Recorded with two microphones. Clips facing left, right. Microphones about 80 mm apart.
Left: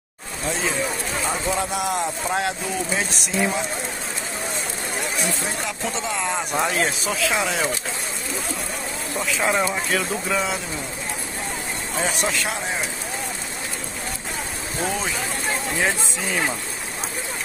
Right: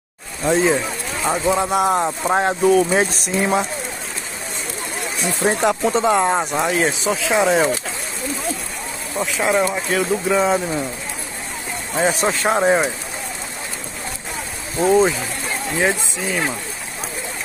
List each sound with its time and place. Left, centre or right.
1.3 s speech: right
1.7 s speech: right
2.6 s speech: right
5.4 s speech: right
6.5 s speech: centre
7.2 s speech: right
9.4 s speech: centre
9.9 s speech: centre
12.0 s speech: right
14.9 s speech: right
15.8 s speech: centre